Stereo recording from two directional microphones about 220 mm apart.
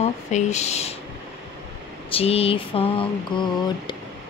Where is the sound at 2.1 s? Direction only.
25° left (ahead or behind).